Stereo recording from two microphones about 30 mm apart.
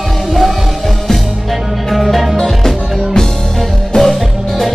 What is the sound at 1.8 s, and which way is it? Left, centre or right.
Music, centre.